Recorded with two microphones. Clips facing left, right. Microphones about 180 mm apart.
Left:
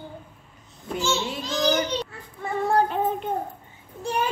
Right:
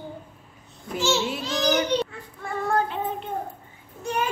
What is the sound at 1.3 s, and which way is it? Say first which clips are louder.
Speech: even; 5° right (ahead or behind).